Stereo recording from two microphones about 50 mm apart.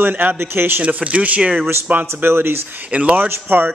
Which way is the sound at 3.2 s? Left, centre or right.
Right.